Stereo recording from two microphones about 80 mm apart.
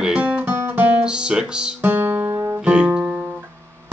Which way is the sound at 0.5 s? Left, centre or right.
Right.